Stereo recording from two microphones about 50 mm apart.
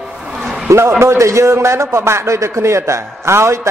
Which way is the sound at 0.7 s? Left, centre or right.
Right.